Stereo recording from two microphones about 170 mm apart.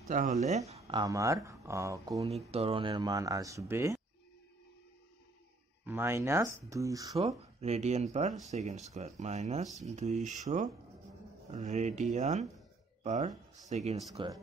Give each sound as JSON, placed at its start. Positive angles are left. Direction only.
{"t": 0.1, "sound": "speech", "side_deg": -50}
{"t": 0.8, "sound": "speech", "side_deg": -25}
{"t": 2.2, "sound": "speech", "side_deg": -35}
{"t": 5.9, "sound": "speech", "side_deg": -15}
{"t": 7.2, "sound": "speech", "side_deg": -40}
{"t": 14.2, "sound": "speech", "side_deg": -30}